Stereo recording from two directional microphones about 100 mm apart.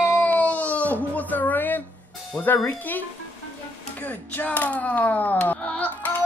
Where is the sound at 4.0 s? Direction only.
15° left (ahead or behind).